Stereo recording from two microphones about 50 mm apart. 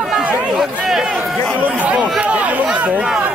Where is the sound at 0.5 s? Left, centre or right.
Centre.